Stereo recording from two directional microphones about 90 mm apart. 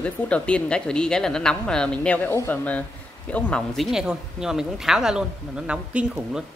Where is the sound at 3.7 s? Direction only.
5° right (ahead or behind).